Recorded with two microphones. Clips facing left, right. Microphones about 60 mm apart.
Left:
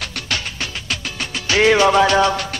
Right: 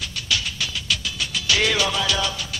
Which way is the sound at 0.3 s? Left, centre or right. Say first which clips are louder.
Even; left.